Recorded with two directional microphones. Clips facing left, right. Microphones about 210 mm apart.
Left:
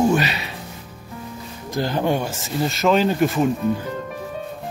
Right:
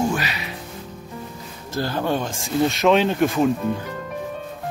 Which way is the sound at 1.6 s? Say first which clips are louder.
Left 2 dB; 15° left (ahead or behind).